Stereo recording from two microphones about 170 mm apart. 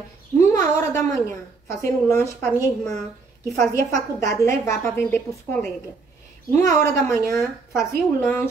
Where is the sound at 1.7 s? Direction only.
15° left (ahead or behind).